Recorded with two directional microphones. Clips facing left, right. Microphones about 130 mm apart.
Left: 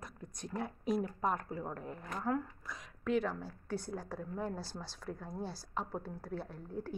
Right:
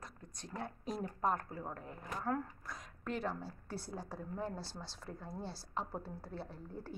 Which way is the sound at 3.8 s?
5° right (ahead or behind).